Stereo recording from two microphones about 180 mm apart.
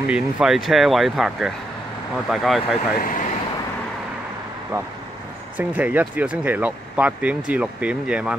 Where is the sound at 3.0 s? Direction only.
50° left (ahead or behind).